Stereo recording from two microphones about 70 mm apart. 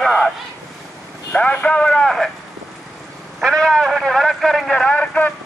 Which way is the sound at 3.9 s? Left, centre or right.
Centre.